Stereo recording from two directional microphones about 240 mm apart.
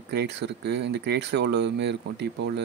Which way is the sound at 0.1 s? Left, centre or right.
Right.